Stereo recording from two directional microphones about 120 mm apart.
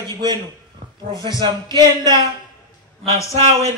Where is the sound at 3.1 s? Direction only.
25° left (ahead or behind).